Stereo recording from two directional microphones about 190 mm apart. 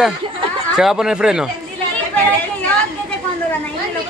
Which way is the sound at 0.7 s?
5° right (ahead or behind).